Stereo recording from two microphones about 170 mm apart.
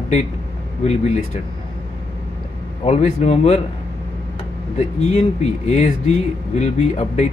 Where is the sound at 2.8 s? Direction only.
40° left (ahead or behind).